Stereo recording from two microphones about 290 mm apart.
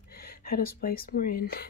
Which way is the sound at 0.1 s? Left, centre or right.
Left.